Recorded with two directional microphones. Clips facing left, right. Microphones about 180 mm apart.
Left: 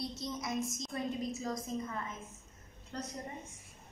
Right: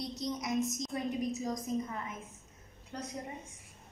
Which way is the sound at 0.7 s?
20° right (ahead or behind).